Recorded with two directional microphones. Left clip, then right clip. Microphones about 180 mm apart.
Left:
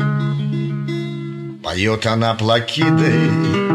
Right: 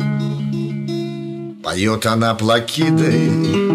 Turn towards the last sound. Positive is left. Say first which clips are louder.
# even
turn(degrees=-60)  # may be behind; listen again after turning